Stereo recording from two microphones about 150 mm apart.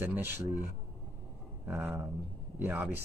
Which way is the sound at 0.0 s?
15° right (ahead or behind).